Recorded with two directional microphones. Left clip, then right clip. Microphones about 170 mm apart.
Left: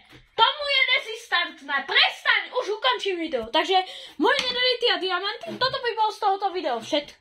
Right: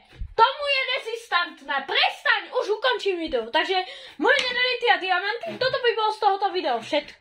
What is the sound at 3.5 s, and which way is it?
Speech, 25° left (ahead or behind).